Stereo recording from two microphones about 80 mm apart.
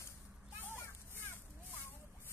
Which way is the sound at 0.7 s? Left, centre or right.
Left.